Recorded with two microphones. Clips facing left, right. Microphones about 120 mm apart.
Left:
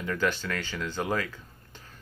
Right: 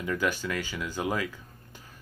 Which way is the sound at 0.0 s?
10° right (ahead or behind).